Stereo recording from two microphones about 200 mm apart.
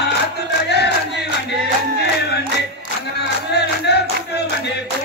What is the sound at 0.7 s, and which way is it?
Battle cry, 55° left (ahead or behind).